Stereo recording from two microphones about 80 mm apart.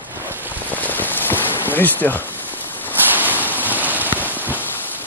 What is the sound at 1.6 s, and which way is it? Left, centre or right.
Speech, left.